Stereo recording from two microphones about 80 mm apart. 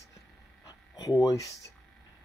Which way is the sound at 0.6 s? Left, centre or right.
Left.